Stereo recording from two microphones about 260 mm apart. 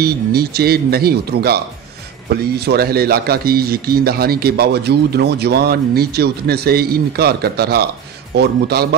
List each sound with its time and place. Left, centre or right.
0.0 s speech: right
2.6 s speech: right